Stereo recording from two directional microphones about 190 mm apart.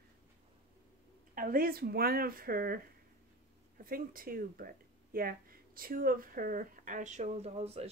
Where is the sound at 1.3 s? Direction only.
45° right (ahead or behind).